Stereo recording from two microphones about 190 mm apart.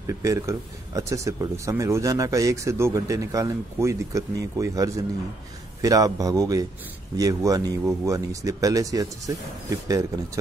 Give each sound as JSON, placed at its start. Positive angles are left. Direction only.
{"t": 0.0, "sound": "a man's voice", "side_deg": -15}